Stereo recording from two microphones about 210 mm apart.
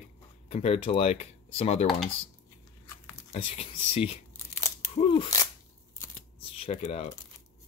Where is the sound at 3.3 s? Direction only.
30° left (ahead or behind).